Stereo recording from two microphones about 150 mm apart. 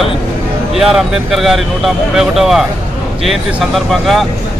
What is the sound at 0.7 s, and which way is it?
Speech, centre (ahead or behind).